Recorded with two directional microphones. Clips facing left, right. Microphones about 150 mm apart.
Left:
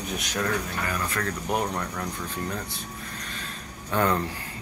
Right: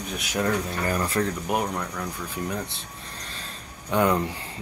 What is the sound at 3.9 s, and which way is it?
Speech, 15° right (ahead or behind).